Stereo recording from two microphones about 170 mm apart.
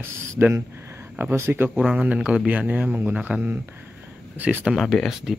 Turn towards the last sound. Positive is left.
turn(degrees=0)  # may be behind; listen again after turning